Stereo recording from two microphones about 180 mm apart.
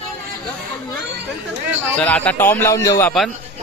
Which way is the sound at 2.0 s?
10° left (ahead or behind).